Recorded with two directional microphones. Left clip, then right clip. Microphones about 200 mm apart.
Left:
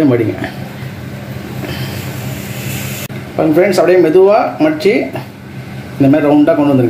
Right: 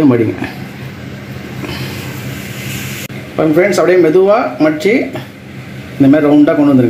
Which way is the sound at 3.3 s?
25° right (ahead or behind).